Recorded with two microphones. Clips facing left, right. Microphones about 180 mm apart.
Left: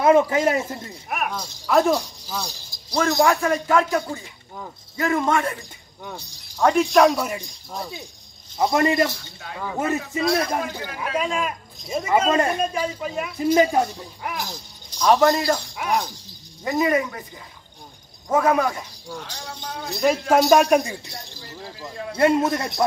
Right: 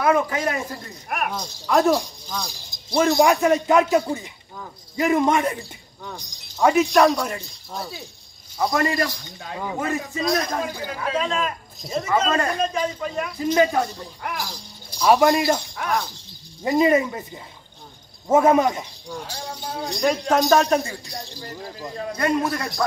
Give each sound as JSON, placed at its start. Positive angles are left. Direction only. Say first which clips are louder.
{"t": 0.0, "sound": "speech", "louder": "left 4 dB", "side_deg": 25}
{"t": 1.0, "sound": "speech", "louder": "right 1 dB", "side_deg": 0}
{"t": 2.7, "sound": "a man's voice", "louder": "right 3 dB", "side_deg": -20}
{"t": 8.5, "sound": "speech", "louder": "left 3 dB", "side_deg": 20}
{"t": 11.1, "sound": "speech", "louder": "left 1 dB", "side_deg": 10}
{"t": 14.9, "sound": "a man's voice", "louder": "right 1 dB", "side_deg": -10}
{"t": 15.7, "sound": "speech", "louder": "left 1 dB", "side_deg": 15}
{"t": 16.6, "sound": "a man's voice", "louder": "right 3 dB", "side_deg": -25}
{"t": 18.3, "sound": "a man's voice", "louder": "right 3 dB", "side_deg": -25}
{"t": 19.9, "sound": "speech", "louder": "left 2 dB", "side_deg": 5}
{"t": 22.1, "sound": "speech", "louder": "left 4 dB", "side_deg": 25}